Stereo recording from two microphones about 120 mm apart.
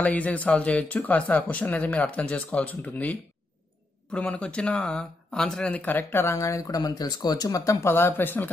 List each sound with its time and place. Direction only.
0.0 s speech: 10° left (ahead or behind)